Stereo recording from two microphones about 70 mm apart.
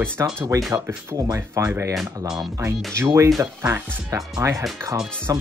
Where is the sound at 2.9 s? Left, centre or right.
Right.